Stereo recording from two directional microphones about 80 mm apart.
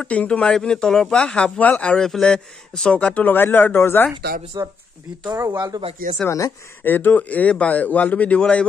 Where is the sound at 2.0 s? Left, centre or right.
Centre; by 4.1 s left.